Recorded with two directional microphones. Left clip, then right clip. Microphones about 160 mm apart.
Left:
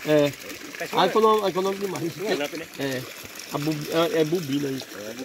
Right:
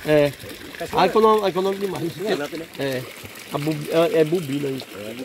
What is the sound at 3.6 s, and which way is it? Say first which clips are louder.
Speech: right 4 dB; 5° left (ahead or behind).